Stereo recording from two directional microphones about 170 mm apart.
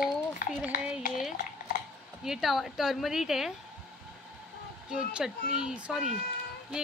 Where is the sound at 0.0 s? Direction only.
55° left (ahead or behind).